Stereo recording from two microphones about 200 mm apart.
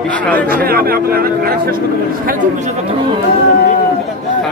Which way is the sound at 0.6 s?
50° right (ahead or behind).